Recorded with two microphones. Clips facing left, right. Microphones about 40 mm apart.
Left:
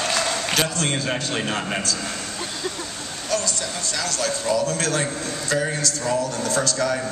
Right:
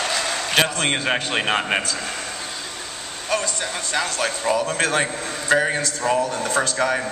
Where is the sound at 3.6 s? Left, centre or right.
Right.